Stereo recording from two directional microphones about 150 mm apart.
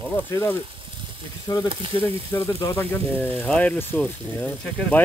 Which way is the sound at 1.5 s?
25° left (ahead or behind).